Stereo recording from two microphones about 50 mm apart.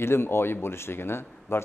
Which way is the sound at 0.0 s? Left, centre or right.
Left.